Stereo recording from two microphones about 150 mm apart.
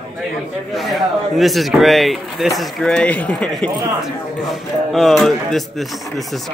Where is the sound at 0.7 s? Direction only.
Centre (ahead or behind).